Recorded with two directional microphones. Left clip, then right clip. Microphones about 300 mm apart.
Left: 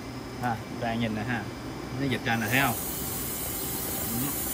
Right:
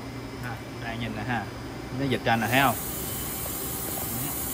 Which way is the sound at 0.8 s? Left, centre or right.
Centre.